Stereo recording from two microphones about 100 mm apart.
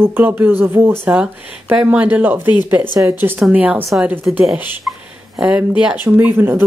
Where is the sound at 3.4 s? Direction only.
10° right (ahead or behind).